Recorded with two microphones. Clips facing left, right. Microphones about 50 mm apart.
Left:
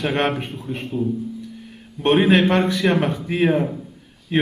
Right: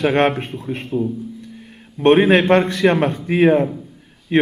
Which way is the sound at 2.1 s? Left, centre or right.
Centre.